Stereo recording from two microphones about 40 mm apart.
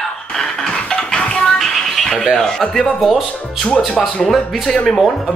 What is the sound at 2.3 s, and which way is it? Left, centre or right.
Speech, centre.